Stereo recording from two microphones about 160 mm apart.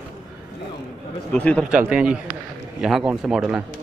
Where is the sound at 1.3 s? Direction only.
10° left (ahead or behind).